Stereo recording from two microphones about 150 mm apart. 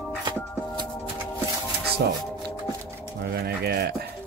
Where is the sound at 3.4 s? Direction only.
90° right.